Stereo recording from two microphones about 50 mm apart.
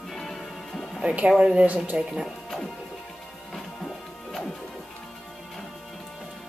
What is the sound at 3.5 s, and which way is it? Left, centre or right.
Music, centre.